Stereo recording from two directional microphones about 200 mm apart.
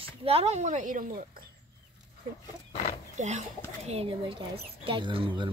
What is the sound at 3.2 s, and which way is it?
Speech, 35° right (ahead or behind).